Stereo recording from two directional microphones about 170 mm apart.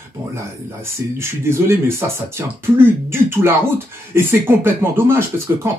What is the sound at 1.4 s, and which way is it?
Speech, 15° right (ahead or behind).